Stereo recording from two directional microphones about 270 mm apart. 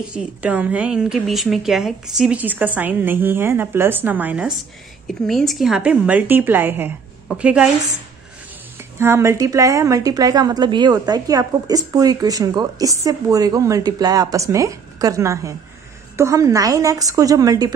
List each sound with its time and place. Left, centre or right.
0.1 s a woman's voice: centre
8.9 s a woman's voice: centre